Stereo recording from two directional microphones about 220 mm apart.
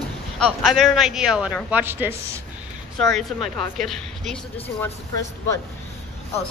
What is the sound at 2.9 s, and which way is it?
Speech, centre (ahead or behind).